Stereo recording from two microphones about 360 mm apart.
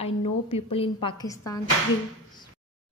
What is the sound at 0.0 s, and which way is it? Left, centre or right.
A woman's voice, centre.